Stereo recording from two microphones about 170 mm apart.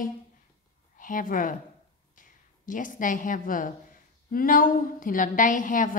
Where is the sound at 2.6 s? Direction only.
50° left (ahead or behind).